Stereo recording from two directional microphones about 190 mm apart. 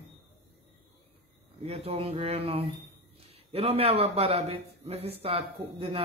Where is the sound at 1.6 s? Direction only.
30° right (ahead or behind).